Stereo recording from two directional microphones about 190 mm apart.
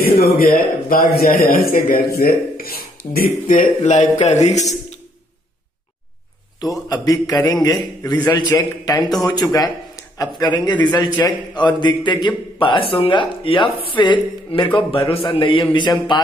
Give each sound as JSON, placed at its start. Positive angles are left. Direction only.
{"t": 0.2, "sound": "speech", "side_deg": 50}
{"t": 6.6, "sound": "a man's voice", "side_deg": 20}